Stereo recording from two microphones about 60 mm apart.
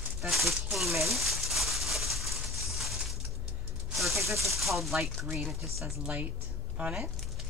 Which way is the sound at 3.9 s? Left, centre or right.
Centre.